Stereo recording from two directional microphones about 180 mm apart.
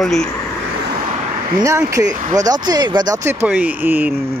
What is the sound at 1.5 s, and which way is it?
Speech, 15° right (ahead or behind).